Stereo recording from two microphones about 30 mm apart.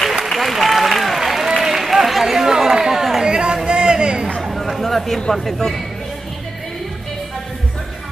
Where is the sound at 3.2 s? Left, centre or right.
Right.